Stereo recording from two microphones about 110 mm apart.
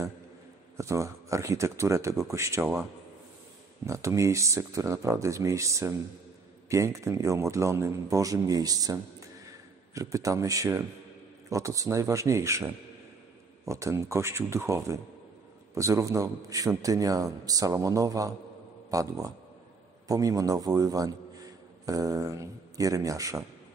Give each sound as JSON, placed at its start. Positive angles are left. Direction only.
{"t": 0.7, "sound": "a man's voice", "side_deg": -25}
{"t": 3.8, "sound": "a man's voice", "side_deg": -25}
{"t": 9.9, "sound": "a man's voice", "side_deg": -30}
{"t": 13.7, "sound": "a man's voice", "side_deg": -25}